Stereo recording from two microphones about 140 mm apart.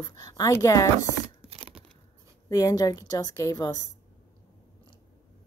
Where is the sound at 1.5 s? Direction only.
40° right (ahead or behind).